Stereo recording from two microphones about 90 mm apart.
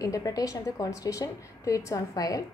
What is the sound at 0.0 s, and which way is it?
A woman's voice, 40° left (ahead or behind).